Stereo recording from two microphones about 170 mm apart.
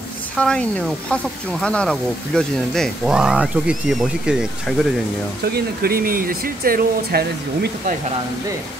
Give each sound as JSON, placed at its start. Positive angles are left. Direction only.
{"t": 0.4, "sound": "speech", "side_deg": 5}
{"t": 5.8, "sound": "speech", "side_deg": -60}